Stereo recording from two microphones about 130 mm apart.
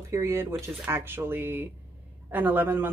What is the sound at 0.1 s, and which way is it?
Speech, 20° right (ahead or behind).